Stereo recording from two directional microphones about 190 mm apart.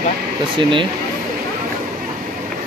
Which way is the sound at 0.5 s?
25° right (ahead or behind).